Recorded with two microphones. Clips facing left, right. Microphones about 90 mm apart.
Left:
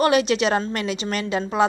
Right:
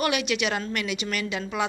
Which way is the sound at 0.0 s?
35° left (ahead or behind).